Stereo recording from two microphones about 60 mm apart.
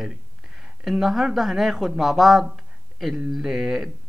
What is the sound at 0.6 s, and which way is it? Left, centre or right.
Speech, centre.